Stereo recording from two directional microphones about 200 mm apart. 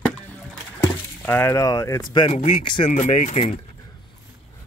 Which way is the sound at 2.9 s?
35° left (ahead or behind).